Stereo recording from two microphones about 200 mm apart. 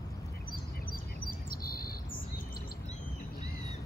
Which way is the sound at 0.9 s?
45° left (ahead or behind).